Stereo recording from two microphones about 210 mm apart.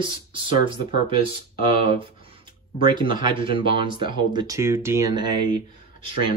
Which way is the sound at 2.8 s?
20° right (ahead or behind).